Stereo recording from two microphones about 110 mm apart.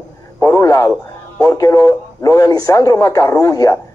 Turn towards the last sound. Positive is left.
turn(degrees=30)  # may be behind; listen again after turning